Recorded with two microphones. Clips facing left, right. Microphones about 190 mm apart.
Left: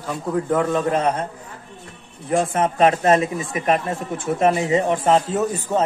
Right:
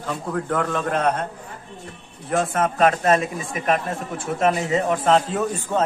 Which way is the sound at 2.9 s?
30° left (ahead or behind).